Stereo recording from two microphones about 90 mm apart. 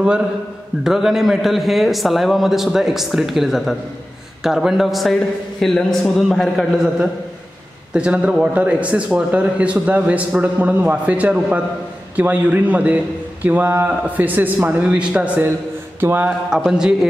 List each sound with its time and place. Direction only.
0.8 s a man's voice: 5° right (ahead or behind)
7.9 s a man's voice: 10° right (ahead or behind)
16.0 s music: 25° right (ahead or behind)
16.3 s a man's voice: 5° right (ahead or behind)